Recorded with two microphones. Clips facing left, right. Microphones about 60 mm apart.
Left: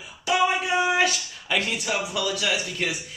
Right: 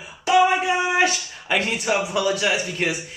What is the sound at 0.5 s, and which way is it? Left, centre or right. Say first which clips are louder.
Speech: right 2 dB; right.